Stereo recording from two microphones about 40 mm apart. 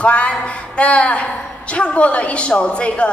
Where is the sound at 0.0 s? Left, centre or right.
Left.